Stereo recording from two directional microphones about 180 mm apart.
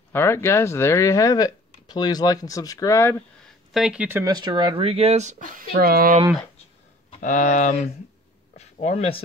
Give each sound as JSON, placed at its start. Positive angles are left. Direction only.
{"t": 0.1, "sound": "speech", "side_deg": 15}
{"t": 3.7, "sound": "speech", "side_deg": -5}
{"t": 7.1, "sound": "speech", "side_deg": 45}